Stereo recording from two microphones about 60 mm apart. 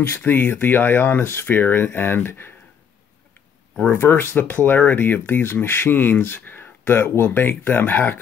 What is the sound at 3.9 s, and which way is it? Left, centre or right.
Speech, left.